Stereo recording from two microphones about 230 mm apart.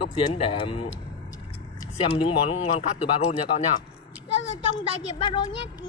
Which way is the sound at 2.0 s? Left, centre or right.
Left.